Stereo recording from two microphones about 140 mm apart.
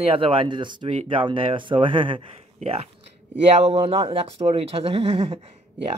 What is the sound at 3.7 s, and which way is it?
Speech, 45° right (ahead or behind).